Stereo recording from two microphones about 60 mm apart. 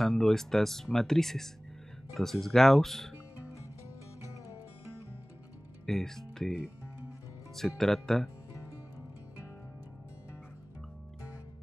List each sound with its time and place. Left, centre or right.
0.0 s speech: centre
5.9 s speech: centre
7.5 s speech: centre